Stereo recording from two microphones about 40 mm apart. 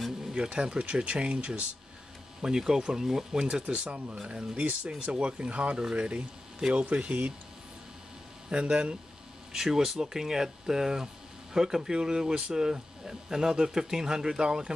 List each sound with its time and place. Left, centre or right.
0.3 s speech: right
2.4 s speech: centre
3.6 s speech: right
8.5 s speech: right
9.5 s speech: centre